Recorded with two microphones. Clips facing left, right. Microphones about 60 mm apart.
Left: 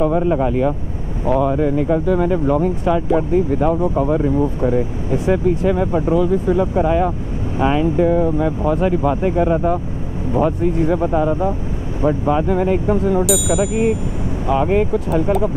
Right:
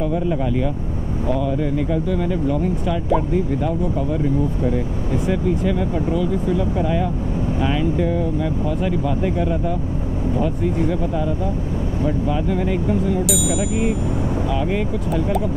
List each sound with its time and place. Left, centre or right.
0.0 s speech: left
13.2 s speech: centre
14.5 s speech: left